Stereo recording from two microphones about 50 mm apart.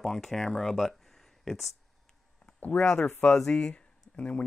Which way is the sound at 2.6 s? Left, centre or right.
Left.